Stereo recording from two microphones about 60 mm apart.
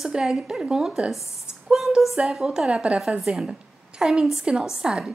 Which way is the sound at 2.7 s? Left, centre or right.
Centre.